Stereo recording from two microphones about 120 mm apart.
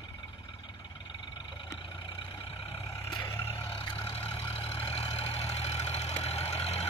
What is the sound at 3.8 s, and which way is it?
Vehicle, 45° left (ahead or behind).